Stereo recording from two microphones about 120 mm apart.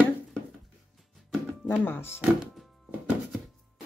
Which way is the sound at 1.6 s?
15° left (ahead or behind).